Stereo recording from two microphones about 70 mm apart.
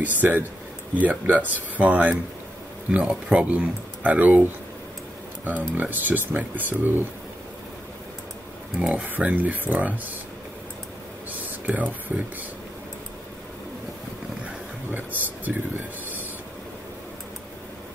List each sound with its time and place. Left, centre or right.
0.0 s speech: right
9.1 s speech: right
11.6 s speech: right
14.9 s speech: right